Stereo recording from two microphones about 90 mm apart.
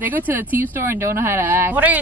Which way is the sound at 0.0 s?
20° right (ahead or behind).